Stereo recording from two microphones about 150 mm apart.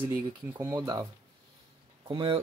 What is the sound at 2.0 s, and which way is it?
Speech, 35° right (ahead or behind).